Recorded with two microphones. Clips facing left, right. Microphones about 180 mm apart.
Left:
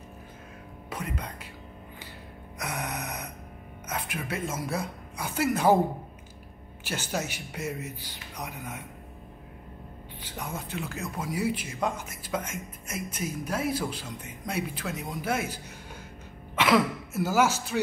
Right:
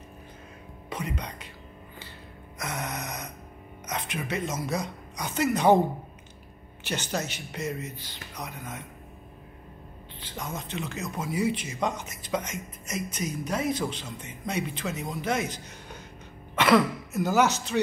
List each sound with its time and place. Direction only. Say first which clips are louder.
0.8 s speech: right 2 dB; centre (ahead or behind)
2.6 s gasp: even; 10° left (ahead or behind)
3.8 s a woman's voice: right 1 dB; 5° left (ahead or behind)
6.8 s speech: right 1 dB; 5° left (ahead or behind)
10.2 s a woman's voice: right 1 dB; 10° left (ahead or behind)